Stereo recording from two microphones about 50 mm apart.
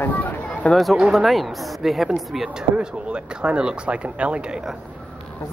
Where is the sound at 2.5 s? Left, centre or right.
Right.